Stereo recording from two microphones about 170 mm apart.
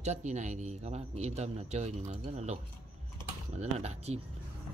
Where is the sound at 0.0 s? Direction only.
40° right (ahead or behind).